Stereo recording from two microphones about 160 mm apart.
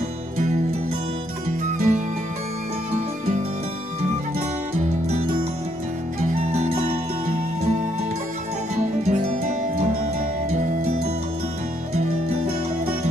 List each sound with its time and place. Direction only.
1.8 s music: 50° right (ahead or behind)
4.7 s music: 45° right (ahead or behind)
8.7 s music: 50° right (ahead or behind)